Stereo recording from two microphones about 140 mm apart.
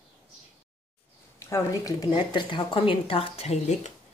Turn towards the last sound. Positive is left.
turn(degrees=55)  # may be behind; listen again after turning